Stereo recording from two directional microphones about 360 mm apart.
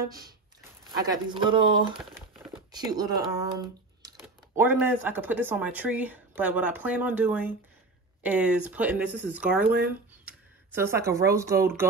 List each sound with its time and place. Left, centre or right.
1.0 s speech: centre
2.7 s speech: centre